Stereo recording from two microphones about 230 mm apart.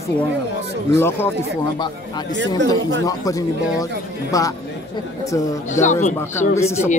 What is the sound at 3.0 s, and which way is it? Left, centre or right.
Speech, centre.